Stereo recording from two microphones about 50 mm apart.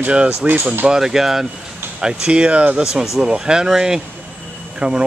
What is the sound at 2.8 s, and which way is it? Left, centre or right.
Speech, centre.